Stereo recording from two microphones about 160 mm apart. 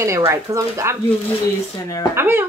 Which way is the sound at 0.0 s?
15° right (ahead or behind).